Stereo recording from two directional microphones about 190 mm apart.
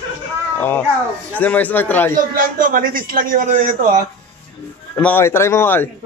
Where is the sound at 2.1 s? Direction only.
50° right (ahead or behind).